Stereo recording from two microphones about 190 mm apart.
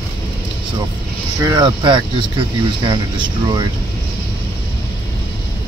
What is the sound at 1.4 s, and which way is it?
Speech, 25° right (ahead or behind).